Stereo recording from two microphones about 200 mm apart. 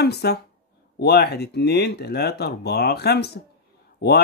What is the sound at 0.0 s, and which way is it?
Speech, 55° left (ahead or behind).